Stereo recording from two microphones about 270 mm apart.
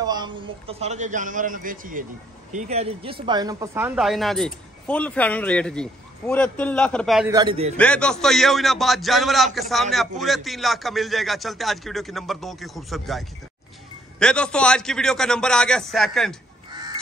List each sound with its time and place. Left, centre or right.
0.0 s a man's voice: centre
7.2 s speech: centre
7.7 s speech: centre
14.2 s speech: centre
16.7 s crow: centre